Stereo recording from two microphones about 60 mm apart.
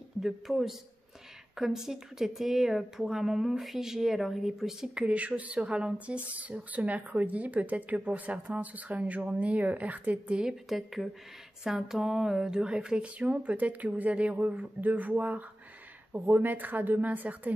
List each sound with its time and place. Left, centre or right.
0.2 s speech: centre
5.0 s speech: right
10.7 s speech: centre; by 17.6 s right